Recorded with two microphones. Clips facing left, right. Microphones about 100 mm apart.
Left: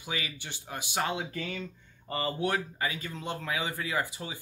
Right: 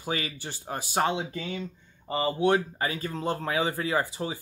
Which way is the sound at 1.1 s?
20° right (ahead or behind).